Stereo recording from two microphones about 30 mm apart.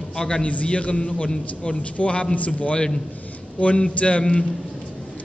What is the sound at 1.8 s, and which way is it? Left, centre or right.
A man's voice, left.